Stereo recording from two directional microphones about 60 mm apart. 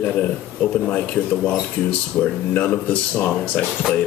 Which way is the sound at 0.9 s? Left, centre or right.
Left.